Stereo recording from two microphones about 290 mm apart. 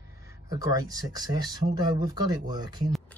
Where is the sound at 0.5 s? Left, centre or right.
Centre.